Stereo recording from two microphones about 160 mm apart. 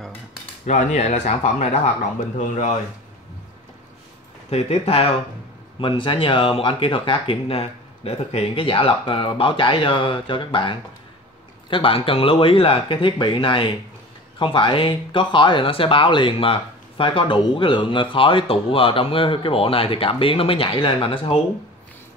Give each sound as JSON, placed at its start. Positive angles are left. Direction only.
{"t": 0.7, "sound": "speech", "side_deg": 45}
{"t": 4.5, "sound": "speech", "side_deg": 40}